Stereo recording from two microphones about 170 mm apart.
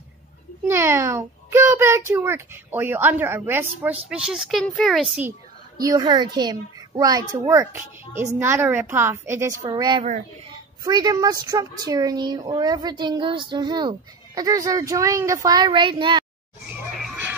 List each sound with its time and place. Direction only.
0.7 s a child's voice: 15° right (ahead or behind)
5.8 s a child's voice: 20° right (ahead or behind)
16.6 s music: 5° right (ahead or behind)